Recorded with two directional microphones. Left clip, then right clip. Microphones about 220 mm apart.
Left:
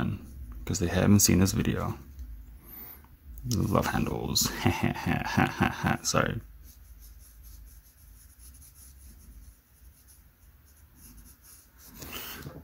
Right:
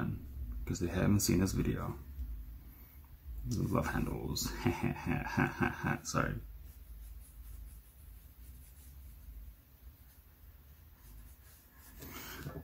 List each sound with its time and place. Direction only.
0.7 s speech: 40° left (ahead or behind)
3.4 s speech: 40° left (ahead or behind)